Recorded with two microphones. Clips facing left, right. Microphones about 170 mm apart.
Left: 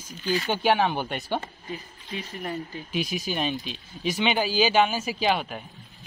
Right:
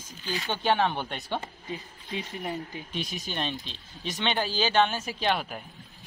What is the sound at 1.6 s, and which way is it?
Speech, 20° right (ahead or behind).